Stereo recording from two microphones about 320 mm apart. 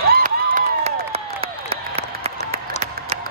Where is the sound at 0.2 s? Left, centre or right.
Right.